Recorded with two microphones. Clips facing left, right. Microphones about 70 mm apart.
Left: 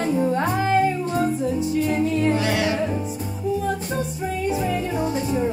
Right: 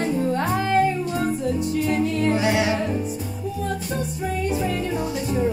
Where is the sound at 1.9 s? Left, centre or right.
Centre.